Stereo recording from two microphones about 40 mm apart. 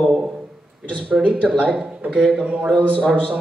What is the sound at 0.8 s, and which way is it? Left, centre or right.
A man's voice, right.